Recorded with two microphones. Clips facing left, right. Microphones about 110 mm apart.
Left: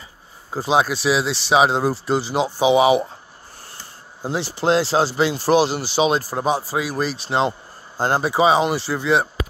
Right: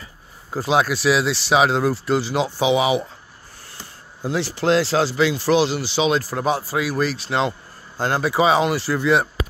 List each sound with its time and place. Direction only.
0.5 s speech: 25° left (ahead or behind); by 3.0 s 45° left (ahead or behind)
4.2 s speech: 30° left (ahead or behind)
6.3 s speech: 25° left (ahead or behind)